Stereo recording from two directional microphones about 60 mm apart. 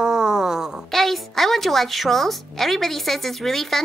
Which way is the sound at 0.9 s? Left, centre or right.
Centre.